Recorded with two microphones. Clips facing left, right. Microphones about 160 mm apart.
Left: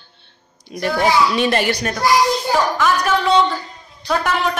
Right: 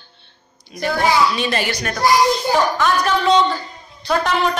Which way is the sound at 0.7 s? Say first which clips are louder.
Left 1 dB; 60° left (ahead or behind).